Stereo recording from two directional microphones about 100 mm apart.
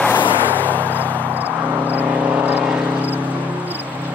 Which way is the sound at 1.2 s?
15° right (ahead or behind).